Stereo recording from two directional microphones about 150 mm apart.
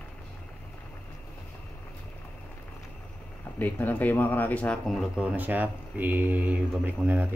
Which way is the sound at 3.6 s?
10° left (ahead or behind).